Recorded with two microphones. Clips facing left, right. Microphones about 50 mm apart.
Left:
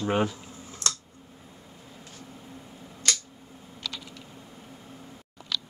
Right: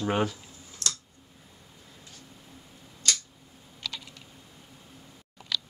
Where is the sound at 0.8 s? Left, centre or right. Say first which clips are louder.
Left 2 dB; left.